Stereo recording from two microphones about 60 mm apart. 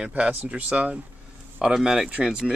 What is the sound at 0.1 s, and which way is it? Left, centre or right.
Speech, right.